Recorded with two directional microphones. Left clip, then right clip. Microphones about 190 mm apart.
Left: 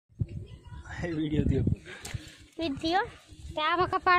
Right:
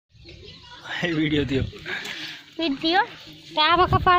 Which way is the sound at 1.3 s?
5° left (ahead or behind).